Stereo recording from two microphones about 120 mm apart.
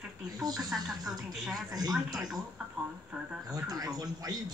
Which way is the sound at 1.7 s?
30° right (ahead or behind).